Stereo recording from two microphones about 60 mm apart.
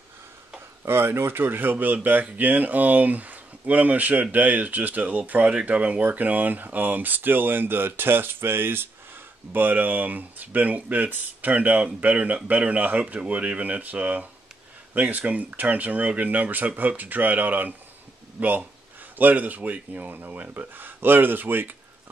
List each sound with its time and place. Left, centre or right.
0.8 s speech: right